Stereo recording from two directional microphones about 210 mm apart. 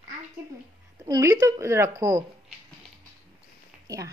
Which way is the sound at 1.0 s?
20° right (ahead or behind).